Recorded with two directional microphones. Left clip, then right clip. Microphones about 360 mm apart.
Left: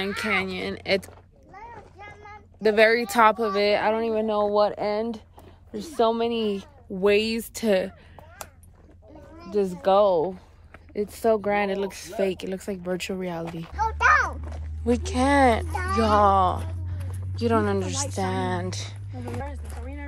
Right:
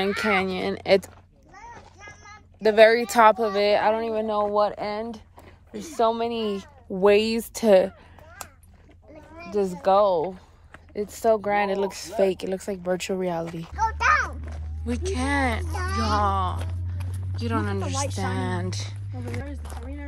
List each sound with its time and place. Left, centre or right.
0.0 s speech: centre
1.6 s a sound: left
2.6 s speech: centre
9.5 s speech: centre